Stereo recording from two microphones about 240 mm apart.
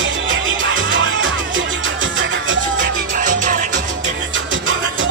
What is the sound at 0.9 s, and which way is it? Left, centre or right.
Music, right.